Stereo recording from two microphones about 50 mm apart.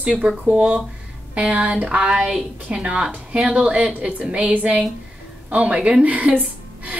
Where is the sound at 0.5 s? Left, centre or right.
Right.